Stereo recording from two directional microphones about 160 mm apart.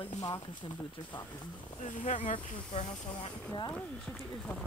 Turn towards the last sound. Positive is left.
turn(degrees=30)  # may be behind; listen again after turning